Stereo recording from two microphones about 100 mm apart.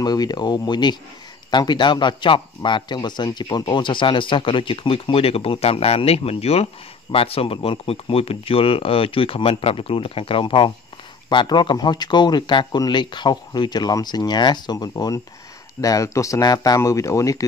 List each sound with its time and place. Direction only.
0.0 s speech: 45° left (ahead or behind); by 10.7 s 60° left (ahead or behind)
11.2 s speech: 50° left (ahead or behind); by 17.4 s 35° left (ahead or behind)